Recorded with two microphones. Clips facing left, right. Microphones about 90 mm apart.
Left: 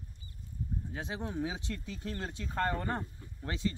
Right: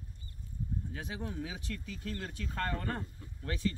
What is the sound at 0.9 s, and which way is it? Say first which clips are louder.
Speech: left 3 dB; 25° left (ahead or behind).